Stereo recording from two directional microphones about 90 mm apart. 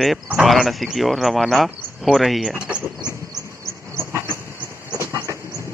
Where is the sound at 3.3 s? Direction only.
35° right (ahead or behind).